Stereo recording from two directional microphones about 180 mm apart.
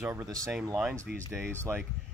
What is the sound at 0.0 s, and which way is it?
Speech, 15° right (ahead or behind).